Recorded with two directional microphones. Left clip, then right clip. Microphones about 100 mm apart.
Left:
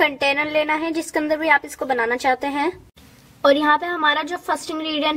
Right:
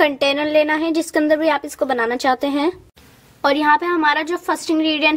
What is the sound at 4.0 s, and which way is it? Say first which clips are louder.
Speech: right 2 dB; 40° right (ahead or behind).